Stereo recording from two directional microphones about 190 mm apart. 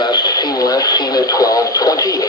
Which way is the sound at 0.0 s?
20° left (ahead or behind).